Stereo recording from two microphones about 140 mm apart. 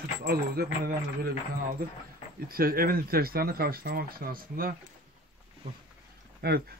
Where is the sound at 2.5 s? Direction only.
90° right.